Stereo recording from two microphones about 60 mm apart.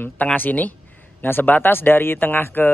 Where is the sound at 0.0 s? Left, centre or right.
Left.